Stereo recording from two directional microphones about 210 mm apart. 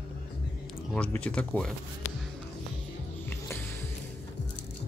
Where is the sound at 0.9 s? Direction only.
5° left (ahead or behind).